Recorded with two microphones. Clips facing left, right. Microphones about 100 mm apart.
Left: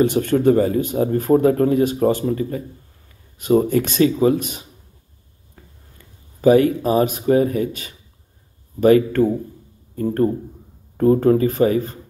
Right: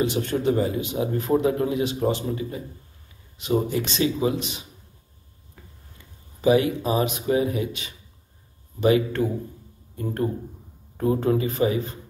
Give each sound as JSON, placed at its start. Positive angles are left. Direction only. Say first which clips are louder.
{"t": 0.0, "sound": "a man's voice", "louder": "left 7 dB", "side_deg": 50}
{"t": 5.9, "sound": "a man's voice", "louder": "left 6 dB", "side_deg": 45}